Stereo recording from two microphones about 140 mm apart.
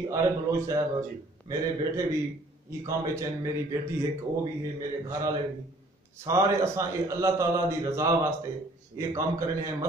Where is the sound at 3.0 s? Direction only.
20° right (ahead or behind).